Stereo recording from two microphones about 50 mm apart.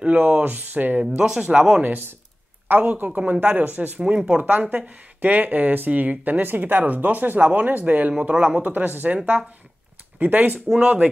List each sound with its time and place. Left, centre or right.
0.0 s speech: right
1.1 s speech: right
1.8 s speech: right